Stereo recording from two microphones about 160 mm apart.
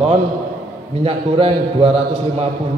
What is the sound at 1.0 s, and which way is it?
A man's voice, 35° right (ahead or behind).